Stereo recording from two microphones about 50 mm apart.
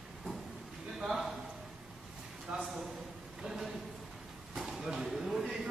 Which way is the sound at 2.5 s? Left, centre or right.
Right.